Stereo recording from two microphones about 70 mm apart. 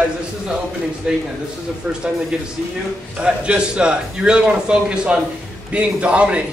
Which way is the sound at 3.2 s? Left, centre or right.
Centre.